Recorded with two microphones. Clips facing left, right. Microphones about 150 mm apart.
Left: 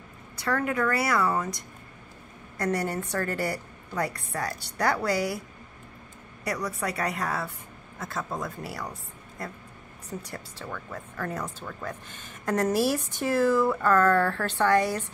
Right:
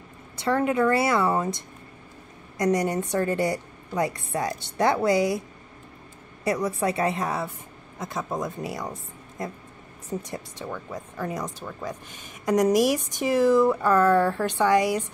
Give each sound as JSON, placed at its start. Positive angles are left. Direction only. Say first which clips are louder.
{"t": 0.4, "sound": "a woman's voice", "louder": "right 5 dB", "side_deg": -25}
{"t": 6.4, "sound": "a woman's voice", "louder": "right 6 dB", "side_deg": -25}